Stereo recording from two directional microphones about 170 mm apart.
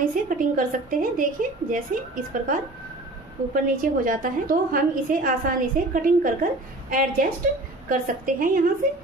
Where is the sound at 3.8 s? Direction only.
55° right (ahead or behind).